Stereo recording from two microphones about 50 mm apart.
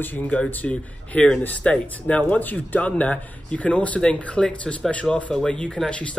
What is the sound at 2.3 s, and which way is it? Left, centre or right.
Speech, left.